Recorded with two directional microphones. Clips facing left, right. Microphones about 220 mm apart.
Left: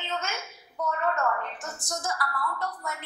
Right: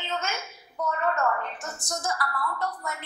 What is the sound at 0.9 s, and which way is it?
A woman's voice, 20° right (ahead or behind).